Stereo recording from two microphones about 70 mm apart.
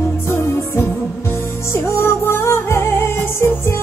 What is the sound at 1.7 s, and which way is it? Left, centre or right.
Music, left.